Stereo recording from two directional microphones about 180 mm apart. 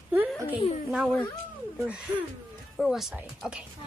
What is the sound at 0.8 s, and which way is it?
Speech, centre (ahead or behind).